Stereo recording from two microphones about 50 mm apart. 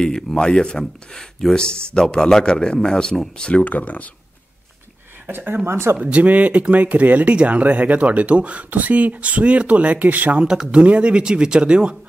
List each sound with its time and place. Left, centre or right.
0.0 s speech: centre
3.6 s speech: left
5.2 s speech: right
5.7 s speech: right
5.9 s speech: right
10.4 s speech: centre